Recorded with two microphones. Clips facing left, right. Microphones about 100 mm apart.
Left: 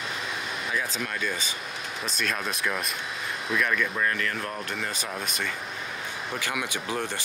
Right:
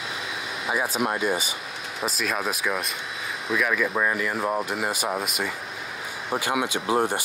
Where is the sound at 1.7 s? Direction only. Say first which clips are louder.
Right 4 dB; centre (ahead or behind).